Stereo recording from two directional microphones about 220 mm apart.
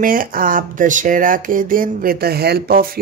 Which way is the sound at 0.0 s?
40° right (ahead or behind).